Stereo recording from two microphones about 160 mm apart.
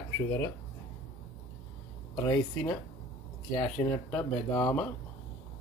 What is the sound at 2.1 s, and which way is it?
Speech, 25° left (ahead or behind).